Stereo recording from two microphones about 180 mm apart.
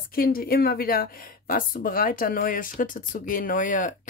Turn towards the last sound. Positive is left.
turn(degrees=45)  # may be behind; listen again after turning